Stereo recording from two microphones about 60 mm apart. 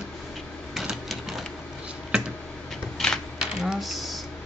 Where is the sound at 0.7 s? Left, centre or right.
Centre.